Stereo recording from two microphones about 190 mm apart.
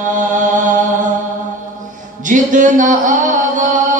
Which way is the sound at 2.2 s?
45° right (ahead or behind).